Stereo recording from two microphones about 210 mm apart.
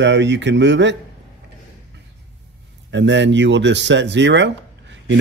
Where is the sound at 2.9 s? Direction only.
60° right (ahead or behind).